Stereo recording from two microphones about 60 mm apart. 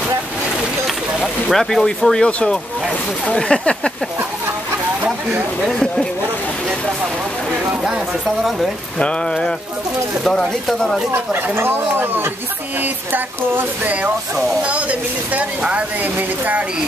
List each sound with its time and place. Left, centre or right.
1.5 s speech: centre
5.7 s speech: centre
9.0 s speech: centre
11.5 s speech: right